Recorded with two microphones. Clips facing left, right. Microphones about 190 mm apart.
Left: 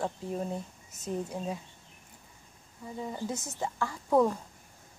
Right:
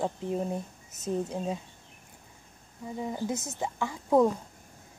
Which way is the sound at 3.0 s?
15° right (ahead or behind).